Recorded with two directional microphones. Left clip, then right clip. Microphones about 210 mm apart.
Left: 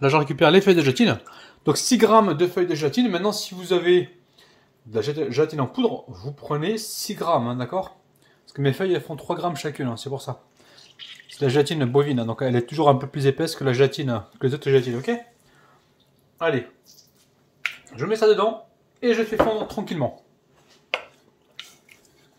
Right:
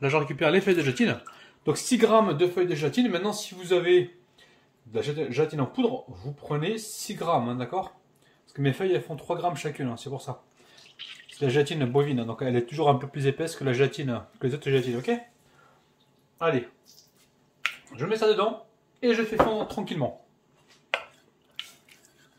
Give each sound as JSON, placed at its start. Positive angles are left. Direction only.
{"t": 0.0, "sound": "speech", "side_deg": 25}
{"t": 11.3, "sound": "speech", "side_deg": 30}
{"t": 16.3, "sound": "speech", "side_deg": 25}
{"t": 17.9, "sound": "speech", "side_deg": 25}
{"t": 19.7, "sound": "speech", "side_deg": 20}